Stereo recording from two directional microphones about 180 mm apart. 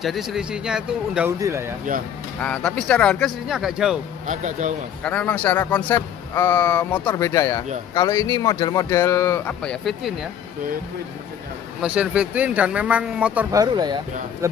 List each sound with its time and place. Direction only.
0.0 s speech: centre (ahead or behind)
1.4 s speech: 15° right (ahead or behind)
2.4 s speech: 5° left (ahead or behind)
4.3 s speech: 45° right (ahead or behind)
5.0 s a man's voice: 10° left (ahead or behind)
11.8 s speech: 5° right (ahead or behind)
13.6 s speech: 20° right (ahead or behind)